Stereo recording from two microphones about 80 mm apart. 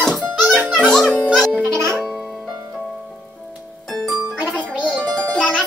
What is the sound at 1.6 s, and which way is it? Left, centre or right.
Music, right.